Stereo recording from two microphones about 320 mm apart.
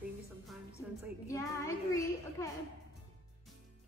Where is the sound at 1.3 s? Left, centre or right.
Centre.